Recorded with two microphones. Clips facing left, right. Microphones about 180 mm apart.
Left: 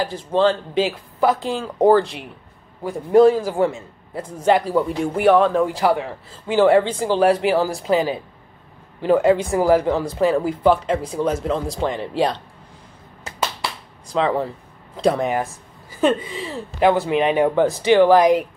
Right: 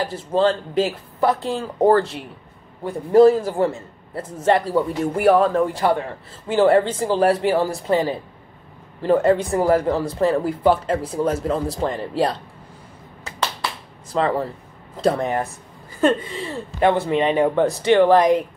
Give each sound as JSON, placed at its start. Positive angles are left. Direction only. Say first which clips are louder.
{"t": 0.0, "sound": "speech", "louder": "left 1 dB", "side_deg": 0}
{"t": 14.1, "sound": "speech", "louder": "left 1 dB", "side_deg": 0}